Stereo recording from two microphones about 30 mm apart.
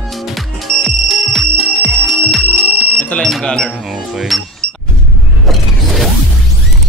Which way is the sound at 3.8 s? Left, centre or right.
Centre.